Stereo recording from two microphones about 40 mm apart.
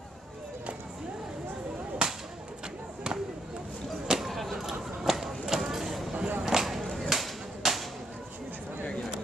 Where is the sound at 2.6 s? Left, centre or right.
Right.